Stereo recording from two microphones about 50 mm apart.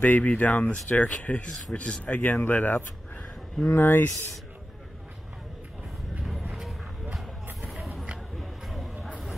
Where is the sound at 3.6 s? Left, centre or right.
Left.